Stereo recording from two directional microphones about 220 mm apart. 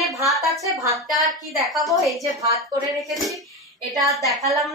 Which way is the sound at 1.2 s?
Centre (ahead or behind).